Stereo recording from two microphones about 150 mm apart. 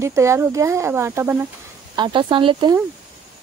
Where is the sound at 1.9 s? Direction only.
35° right (ahead or behind).